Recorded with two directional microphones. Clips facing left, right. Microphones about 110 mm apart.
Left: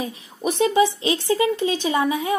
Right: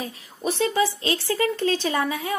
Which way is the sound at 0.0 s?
15° left (ahead or behind).